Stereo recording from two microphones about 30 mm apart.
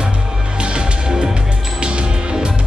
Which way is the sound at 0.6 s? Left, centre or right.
Right.